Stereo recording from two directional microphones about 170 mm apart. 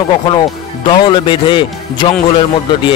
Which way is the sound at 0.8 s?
25° left (ahead or behind).